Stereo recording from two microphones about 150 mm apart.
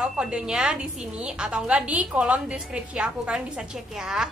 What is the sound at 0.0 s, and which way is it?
A woman's voice, 5° right (ahead or behind).